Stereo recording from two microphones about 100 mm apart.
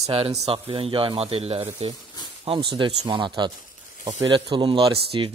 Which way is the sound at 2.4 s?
55° right (ahead or behind).